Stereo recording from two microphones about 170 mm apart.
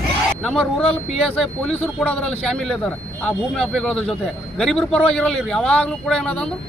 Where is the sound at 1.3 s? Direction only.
5° left (ahead or behind).